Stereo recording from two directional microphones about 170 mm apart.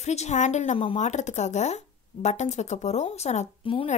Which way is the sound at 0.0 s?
40° left (ahead or behind).